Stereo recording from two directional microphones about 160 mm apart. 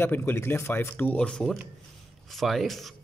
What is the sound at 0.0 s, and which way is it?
A man's voice, 15° left (ahead or behind).